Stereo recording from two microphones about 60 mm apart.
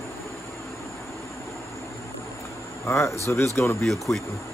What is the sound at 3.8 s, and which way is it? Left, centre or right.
Speech, centre.